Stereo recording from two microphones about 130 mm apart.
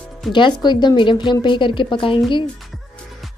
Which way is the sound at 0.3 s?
35° left (ahead or behind).